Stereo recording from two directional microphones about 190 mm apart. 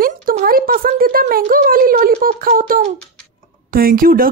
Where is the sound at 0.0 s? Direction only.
50° right (ahead or behind).